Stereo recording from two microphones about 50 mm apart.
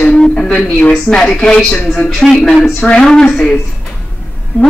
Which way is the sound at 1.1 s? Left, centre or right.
Centre.